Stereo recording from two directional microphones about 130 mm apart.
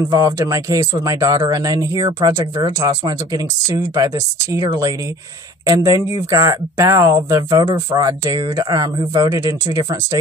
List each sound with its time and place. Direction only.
0.1 s speech: 25° right (ahead or behind)